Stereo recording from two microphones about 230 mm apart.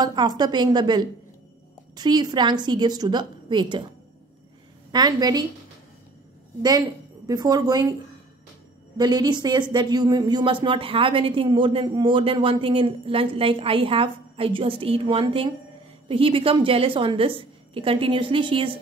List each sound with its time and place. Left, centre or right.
0.0 s a woman's voice: centre
4.9 s a woman's voice: centre
7.2 s a woman's voice: centre
8.9 s a woman's voice: centre